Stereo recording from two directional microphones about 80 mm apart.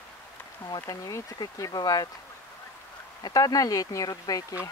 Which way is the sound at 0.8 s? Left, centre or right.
Left.